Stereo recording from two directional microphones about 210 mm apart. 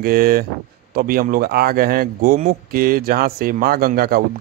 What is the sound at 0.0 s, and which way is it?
Speech, 45° right (ahead or behind).